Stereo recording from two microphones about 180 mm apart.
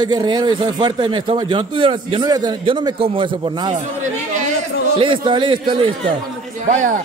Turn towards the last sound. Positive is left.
turn(degrees=-45)  # may be behind; listen again after turning